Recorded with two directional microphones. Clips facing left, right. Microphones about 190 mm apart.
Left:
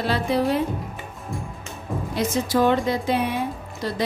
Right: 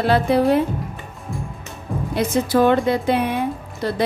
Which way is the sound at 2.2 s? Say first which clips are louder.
Right 4 dB; 55° right (ahead or behind).